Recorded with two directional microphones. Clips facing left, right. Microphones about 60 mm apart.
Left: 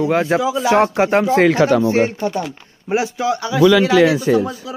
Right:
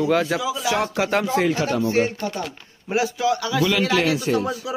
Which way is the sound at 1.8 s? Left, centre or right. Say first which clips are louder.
Left 5 dB; left.